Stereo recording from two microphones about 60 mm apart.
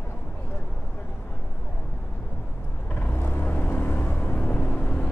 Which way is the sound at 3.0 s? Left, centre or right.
Left.